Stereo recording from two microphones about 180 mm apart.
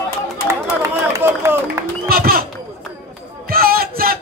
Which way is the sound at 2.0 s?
55° right (ahead or behind).